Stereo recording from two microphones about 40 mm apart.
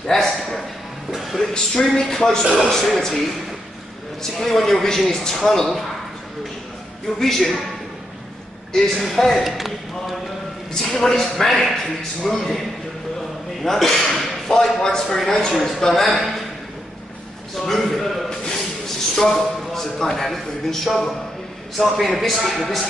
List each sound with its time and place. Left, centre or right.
0.0 s a man's voice: centre
1.1 s music: centre
1.5 s a man's voice: centre
7.2 s a man's voice: centre
8.9 s a man's voice: centre
10.8 s a man's voice: centre
13.7 s a man's voice: centre
17.6 s a man's voice: centre